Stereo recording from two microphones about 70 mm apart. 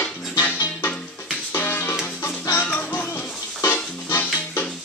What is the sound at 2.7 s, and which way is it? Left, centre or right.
Music, left.